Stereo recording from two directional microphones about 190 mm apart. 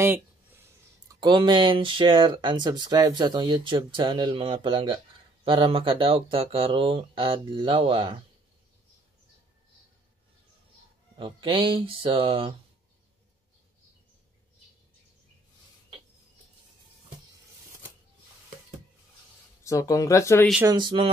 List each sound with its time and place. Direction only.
1.2 s speech: 25° right (ahead or behind)
11.1 s speech: 25° right (ahead or behind)
19.6 s speech: 15° left (ahead or behind)
20.6 s speech: 25° right (ahead or behind)